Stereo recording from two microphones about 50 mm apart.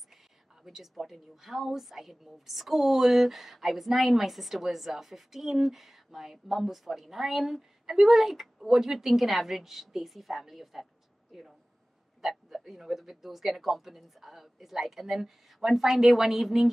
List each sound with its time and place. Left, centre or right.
0.7 s a woman's voice: centre